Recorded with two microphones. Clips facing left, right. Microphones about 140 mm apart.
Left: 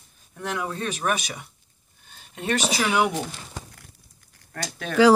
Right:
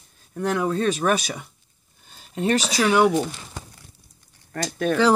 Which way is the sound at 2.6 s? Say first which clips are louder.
Right 4 dB; 10° left (ahead or behind).